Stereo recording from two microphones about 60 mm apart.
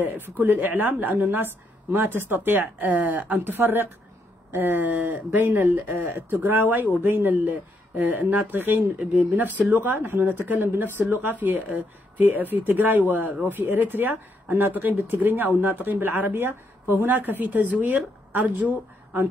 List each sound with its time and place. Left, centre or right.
0.0 s a woman's voice: right